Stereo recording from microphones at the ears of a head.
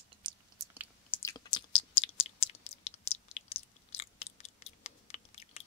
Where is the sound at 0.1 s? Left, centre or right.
Right.